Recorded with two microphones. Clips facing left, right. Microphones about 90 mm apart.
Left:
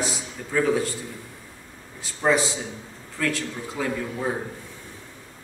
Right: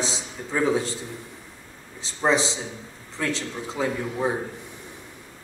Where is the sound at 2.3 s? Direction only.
25° right (ahead or behind).